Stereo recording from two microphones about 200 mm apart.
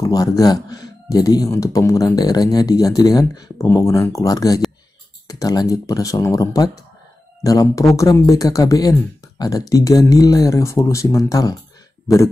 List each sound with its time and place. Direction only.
0.0 s speech: 15° left (ahead or behind)